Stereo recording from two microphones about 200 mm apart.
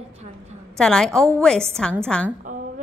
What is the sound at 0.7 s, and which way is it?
A woman's voice, 5° left (ahead or behind).